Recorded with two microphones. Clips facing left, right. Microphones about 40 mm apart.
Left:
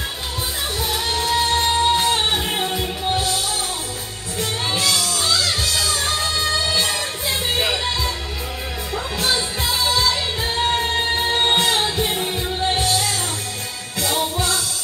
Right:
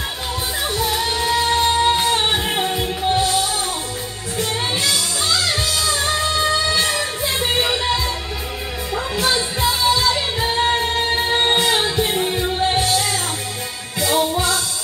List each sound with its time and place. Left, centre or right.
0.7 s music: centre
4.8 s music: centre